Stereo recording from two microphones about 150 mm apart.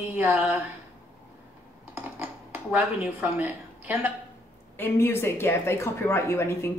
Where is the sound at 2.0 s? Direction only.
15° right (ahead or behind).